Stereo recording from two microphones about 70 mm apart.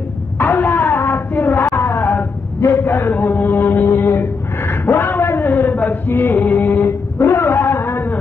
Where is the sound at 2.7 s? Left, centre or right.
Left.